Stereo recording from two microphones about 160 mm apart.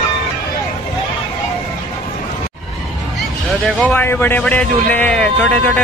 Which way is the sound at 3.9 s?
10° left (ahead or behind).